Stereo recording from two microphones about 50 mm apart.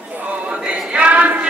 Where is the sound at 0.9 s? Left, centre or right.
Right.